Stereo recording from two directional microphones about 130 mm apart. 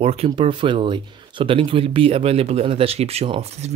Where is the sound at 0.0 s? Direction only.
50° right (ahead or behind).